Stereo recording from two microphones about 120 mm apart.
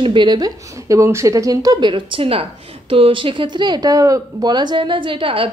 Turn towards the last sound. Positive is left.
turn(degrees=-50)  # may be behind; listen again after turning